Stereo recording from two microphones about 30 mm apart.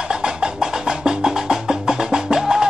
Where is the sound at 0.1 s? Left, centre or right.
Right.